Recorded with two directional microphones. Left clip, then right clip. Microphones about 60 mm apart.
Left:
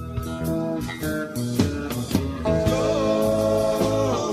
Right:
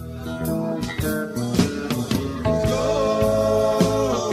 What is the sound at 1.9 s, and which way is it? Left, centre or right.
Music, centre.